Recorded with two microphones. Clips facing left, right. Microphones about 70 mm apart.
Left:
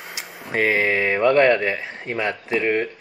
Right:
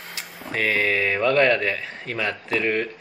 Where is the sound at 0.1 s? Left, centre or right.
Left.